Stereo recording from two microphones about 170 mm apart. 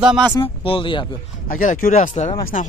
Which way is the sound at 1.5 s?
55° left (ahead or behind).